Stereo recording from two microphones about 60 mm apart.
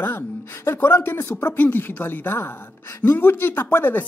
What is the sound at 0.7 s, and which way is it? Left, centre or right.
Speech, left.